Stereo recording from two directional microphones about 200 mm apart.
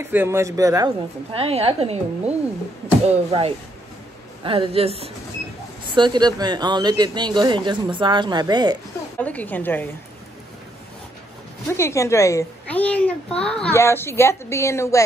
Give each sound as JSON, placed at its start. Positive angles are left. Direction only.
{"t": 0.0, "sound": "speech", "side_deg": -10}
{"t": 9.2, "sound": "a woman's voice", "side_deg": 10}
{"t": 11.7, "sound": "a woman's voice", "side_deg": 15}